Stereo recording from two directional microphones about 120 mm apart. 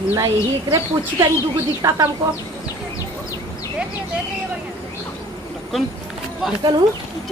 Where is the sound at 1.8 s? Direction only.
30° right (ahead or behind).